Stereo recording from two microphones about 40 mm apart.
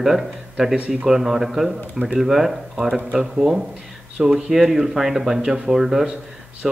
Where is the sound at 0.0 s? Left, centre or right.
Centre.